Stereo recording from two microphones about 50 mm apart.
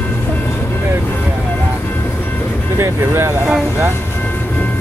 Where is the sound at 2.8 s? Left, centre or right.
Right.